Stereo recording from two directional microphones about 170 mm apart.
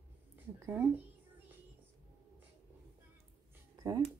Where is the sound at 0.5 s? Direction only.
15° right (ahead or behind).